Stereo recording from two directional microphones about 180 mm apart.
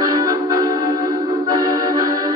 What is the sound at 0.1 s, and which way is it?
Music, 20° right (ahead or behind).